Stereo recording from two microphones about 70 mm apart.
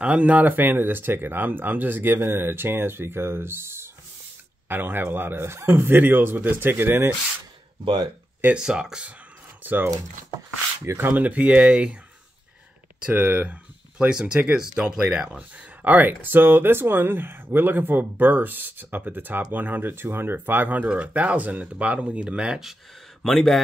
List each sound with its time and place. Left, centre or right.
0.0 s speech: centre
8.5 s speech: centre
9.6 s crumpling: right
10.9 s speech: right
13.0 s speech: right
13.9 s speech: centre
15.8 s speech: right
23.2 s speech: centre